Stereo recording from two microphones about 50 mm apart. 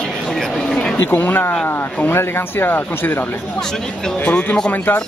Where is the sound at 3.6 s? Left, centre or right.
Centre.